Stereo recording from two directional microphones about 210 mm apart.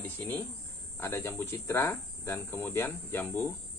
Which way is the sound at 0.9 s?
10° left (ahead or behind).